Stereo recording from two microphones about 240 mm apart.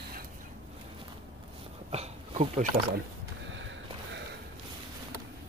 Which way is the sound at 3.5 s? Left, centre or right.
Right.